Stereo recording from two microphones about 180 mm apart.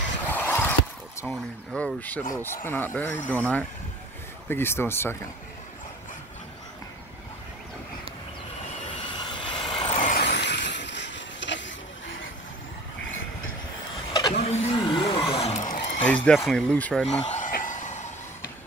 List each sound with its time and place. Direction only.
0.3 s a sound: 10° left (ahead or behind)
2.3 s speech: 15° left (ahead or behind)
9.2 s vehicle: 25° left (ahead or behind)
9.9 s vehicle: 45° left (ahead or behind)
10.2 s vehicle: 75° left (ahead or behind)
14.3 s vehicle: 35° left (ahead or behind)
14.9 s a sound: 30° left (ahead or behind)
16.1 s speech: 5° left (ahead or behind)
17.3 s a sound: 50° left (ahead or behind)